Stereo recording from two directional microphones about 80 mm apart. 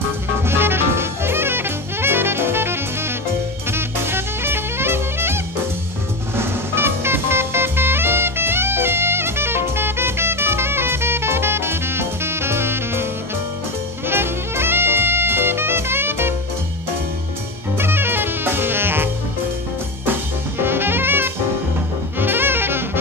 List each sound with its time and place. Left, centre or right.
0.5 s jazz: right
3.7 s music: right
14.0 s music: right
17.7 s music: right
20.6 s music: right
22.2 s saxophone: right